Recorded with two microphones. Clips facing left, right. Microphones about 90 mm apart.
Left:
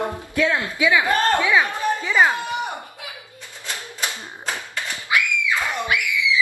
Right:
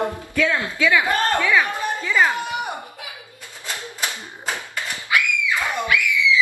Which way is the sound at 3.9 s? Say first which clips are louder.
Even; 10° right (ahead or behind).